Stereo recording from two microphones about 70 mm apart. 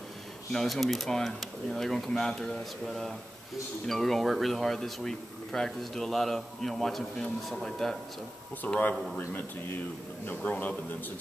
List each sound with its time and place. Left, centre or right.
0.5 s speech: centre
8.6 s a man's voice: left